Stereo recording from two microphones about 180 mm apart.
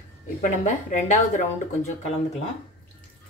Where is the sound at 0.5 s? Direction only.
45° left (ahead or behind).